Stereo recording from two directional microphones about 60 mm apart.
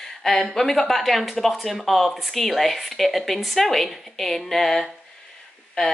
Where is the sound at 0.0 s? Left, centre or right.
Centre.